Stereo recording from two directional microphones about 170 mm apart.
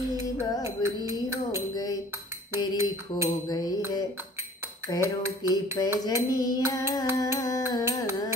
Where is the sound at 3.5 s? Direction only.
25° left (ahead or behind).